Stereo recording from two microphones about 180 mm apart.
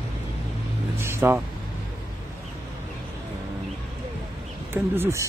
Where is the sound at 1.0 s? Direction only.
15° right (ahead or behind).